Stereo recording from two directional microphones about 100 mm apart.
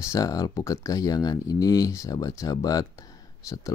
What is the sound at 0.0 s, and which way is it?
Speech, 35° left (ahead or behind).